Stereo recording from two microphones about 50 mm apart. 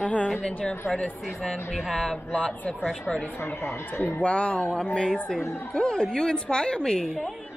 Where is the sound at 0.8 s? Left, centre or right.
Centre.